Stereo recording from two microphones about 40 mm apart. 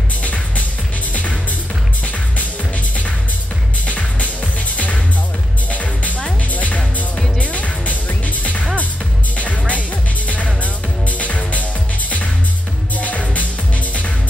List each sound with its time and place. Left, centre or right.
0.2 s music: left
3.8 s music: left
12.9 s music: left